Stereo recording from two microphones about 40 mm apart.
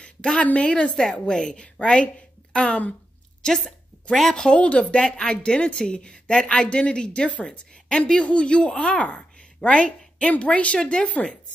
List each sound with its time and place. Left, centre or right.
0.0 s a sound: left
0.5 s a woman's voice: left
1.1 s a woman's voice: centre
1.8 s a woman's voice: left
4.1 s a woman's voice: centre
4.6 s a woman's voice: left
10.8 s a woman's voice: left